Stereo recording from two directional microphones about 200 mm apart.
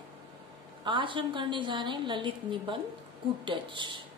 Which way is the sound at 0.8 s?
25° right (ahead or behind).